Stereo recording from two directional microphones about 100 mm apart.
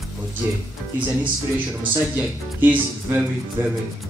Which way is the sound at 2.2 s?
20° right (ahead or behind).